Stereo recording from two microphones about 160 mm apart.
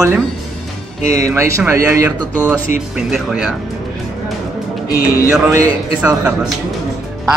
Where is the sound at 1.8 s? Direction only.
15° right (ahead or behind).